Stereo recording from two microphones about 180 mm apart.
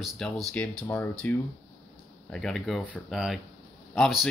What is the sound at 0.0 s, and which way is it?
Speech, centre (ahead or behind).